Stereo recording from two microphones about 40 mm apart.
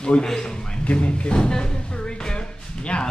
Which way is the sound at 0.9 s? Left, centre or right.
Left.